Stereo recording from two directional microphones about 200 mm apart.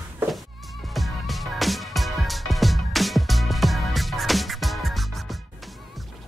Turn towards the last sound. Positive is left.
turn(degrees=0)  # may be behind; listen again after turning